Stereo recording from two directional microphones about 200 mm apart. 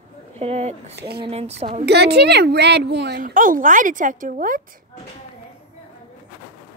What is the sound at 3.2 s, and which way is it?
Speech, 40° right (ahead or behind).